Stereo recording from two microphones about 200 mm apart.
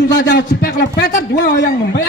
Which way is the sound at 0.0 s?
60° left (ahead or behind).